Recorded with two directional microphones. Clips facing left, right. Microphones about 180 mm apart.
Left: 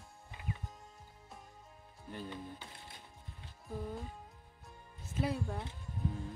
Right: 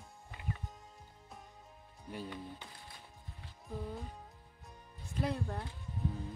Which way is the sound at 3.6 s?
Centre (ahead or behind).